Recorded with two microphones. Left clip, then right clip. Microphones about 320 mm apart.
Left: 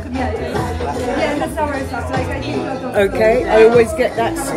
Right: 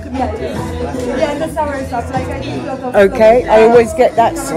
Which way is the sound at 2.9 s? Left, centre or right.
Centre.